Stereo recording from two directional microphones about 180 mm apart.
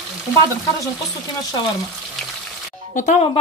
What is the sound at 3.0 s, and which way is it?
Speech, 45° left (ahead or behind).